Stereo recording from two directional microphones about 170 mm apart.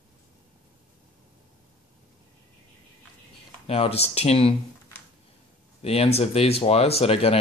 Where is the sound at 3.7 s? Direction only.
35° left (ahead or behind).